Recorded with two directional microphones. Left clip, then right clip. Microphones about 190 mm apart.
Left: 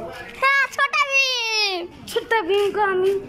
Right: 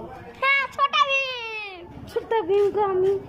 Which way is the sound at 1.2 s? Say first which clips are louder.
Left 9 dB; 15° left (ahead or behind).